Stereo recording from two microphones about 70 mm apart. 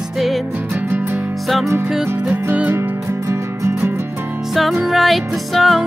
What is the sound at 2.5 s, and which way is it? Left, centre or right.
Music, right.